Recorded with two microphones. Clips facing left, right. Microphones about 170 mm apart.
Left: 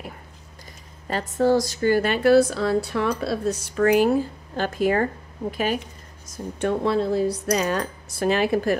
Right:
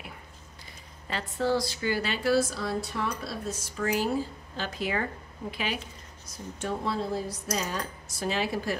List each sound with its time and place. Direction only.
1.0 s speech: 45° left (ahead or behind)